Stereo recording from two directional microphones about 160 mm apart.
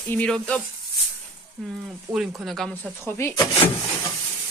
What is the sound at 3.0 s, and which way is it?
Speech, 15° left (ahead or behind).